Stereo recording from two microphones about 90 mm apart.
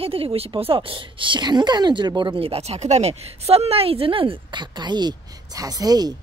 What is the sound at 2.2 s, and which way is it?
Speech, 75° right (ahead or behind).